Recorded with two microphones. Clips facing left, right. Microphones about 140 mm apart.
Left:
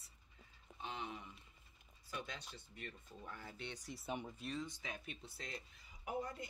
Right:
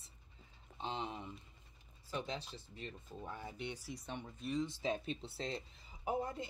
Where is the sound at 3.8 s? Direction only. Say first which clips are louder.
Left 1 dB; 5° left (ahead or behind).